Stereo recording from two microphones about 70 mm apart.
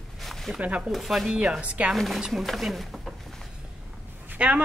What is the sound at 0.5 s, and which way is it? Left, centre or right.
Speech, centre.